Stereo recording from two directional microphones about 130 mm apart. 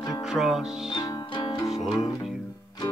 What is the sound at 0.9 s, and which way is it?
Music, 35° left (ahead or behind).